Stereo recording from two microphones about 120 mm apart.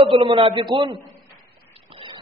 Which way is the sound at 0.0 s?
45° right (ahead or behind).